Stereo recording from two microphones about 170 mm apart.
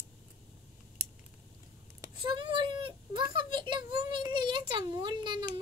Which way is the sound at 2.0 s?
30° right (ahead or behind).